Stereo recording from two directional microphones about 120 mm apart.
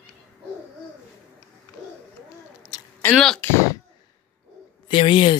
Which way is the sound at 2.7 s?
30° left (ahead or behind).